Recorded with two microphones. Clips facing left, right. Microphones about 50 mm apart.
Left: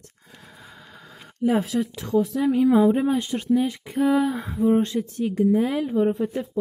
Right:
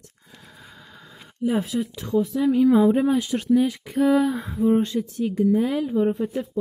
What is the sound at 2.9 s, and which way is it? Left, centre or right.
Speech, centre.